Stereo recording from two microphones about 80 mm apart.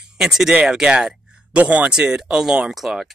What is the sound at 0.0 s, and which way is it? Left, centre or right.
Speech, centre.